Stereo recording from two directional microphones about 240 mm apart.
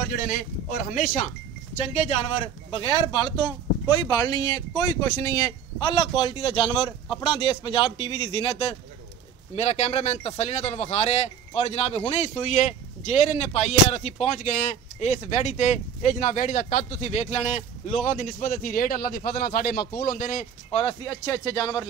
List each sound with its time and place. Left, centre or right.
0.1 s speech: left
2.0 s speech: left
9.6 s speech: left